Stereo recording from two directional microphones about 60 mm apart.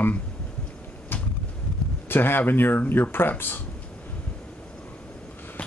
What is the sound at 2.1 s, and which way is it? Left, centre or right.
Speech, left.